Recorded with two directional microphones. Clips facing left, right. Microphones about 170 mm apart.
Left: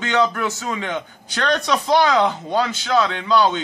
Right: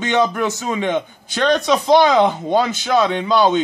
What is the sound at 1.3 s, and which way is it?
Speech, 5° right (ahead or behind).